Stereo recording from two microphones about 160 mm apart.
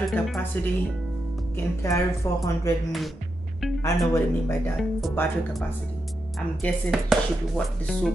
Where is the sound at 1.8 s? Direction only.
20° left (ahead or behind).